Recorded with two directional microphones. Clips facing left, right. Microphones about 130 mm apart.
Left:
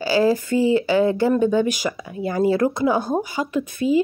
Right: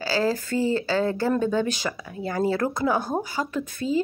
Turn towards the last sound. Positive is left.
turn(degrees=15)  # may be behind; listen again after turning